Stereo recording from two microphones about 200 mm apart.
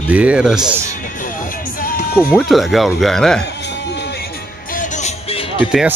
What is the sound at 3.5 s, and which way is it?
Music, 60° left (ahead or behind).